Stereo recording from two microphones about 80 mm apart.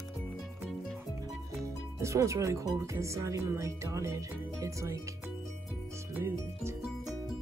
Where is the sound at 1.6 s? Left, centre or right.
Right.